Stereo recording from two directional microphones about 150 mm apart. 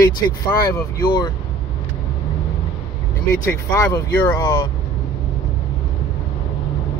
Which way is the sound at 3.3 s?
20° left (ahead or behind).